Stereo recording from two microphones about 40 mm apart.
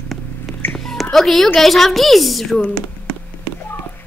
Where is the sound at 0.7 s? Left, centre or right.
Centre.